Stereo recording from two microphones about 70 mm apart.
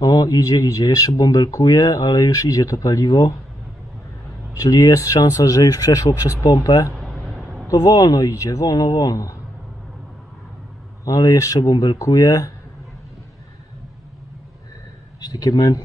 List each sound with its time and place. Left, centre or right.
0.0 s speech: left
2.3 s speech: left
4.6 s speech: left
7.0 s a sound: centre
7.7 s speech: left
11.1 s speech: left
12.0 s speech: left
15.2 s speech: left